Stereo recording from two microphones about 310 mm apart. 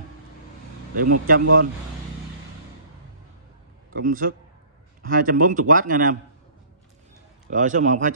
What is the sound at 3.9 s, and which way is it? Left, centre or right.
Speech, right.